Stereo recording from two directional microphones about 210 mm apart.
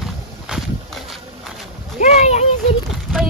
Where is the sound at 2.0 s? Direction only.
30° left (ahead or behind).